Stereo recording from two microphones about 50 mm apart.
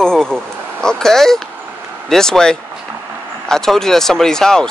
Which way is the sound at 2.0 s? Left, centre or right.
Centre.